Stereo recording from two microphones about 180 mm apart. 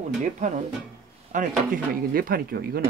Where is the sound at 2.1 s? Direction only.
55° right (ahead or behind).